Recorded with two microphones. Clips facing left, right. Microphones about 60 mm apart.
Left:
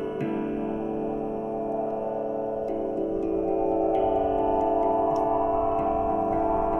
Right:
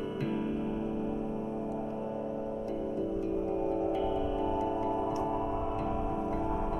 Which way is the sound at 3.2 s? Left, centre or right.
Left.